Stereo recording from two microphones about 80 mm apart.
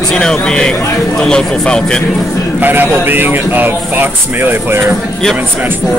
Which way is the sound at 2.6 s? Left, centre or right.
Right.